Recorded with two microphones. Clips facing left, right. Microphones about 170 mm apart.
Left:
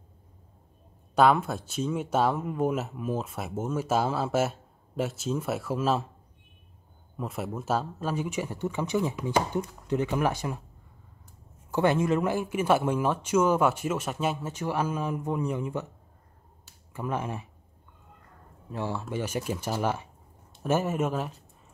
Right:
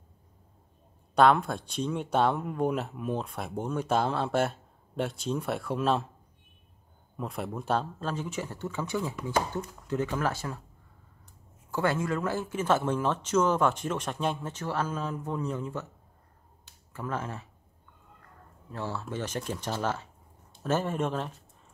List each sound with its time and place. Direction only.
1.1 s speech: 5° left (ahead or behind)
7.2 s speech: 5° left (ahead or behind)
11.7 s speech: 20° left (ahead or behind)
16.6 s finger snapping: 15° left (ahead or behind)
18.7 s speech: 15° left (ahead or behind)